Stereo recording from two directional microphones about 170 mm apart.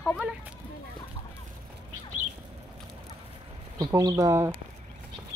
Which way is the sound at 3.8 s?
20° right (ahead or behind).